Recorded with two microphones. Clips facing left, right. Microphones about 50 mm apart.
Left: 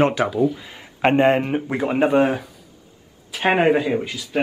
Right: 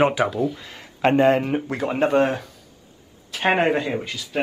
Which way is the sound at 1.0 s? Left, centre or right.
Left.